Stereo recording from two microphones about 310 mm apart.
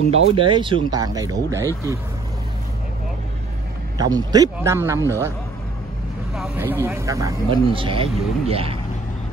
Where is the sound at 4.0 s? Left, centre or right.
Centre.